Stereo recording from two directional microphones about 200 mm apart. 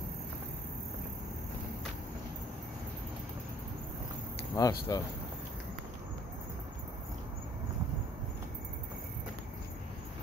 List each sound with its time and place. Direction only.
4.6 s speech: 15° left (ahead or behind)